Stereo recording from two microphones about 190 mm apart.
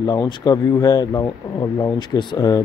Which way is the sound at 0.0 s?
20° left (ahead or behind).